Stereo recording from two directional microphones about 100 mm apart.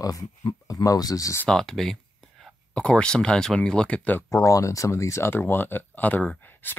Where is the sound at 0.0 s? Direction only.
35° left (ahead or behind).